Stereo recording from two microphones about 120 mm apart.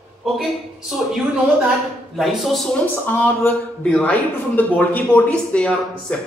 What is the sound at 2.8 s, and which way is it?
A woman's voice, 15° left (ahead or behind).